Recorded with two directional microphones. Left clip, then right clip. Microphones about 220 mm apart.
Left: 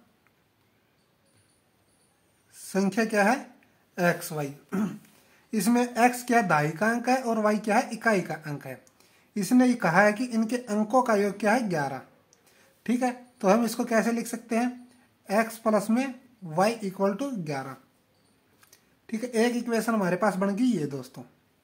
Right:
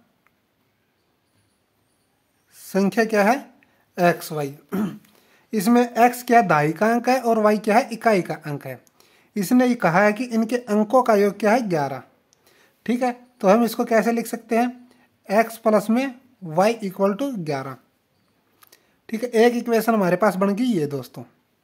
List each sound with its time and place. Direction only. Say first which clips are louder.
2.5 s speech: right 7 dB; 40° right (ahead or behind)